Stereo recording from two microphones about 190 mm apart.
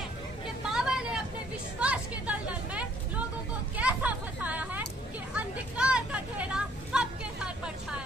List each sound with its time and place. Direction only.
0.7 s vehicle: 5° right (ahead or behind)
1.8 s a sound: 5° right (ahead or behind)
5.3 s vehicle: 5° right (ahead or behind)